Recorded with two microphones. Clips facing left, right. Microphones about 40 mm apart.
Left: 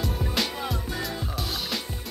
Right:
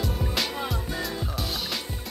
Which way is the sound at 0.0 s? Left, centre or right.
Centre.